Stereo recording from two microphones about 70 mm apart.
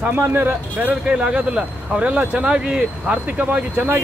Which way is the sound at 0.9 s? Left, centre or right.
Centre.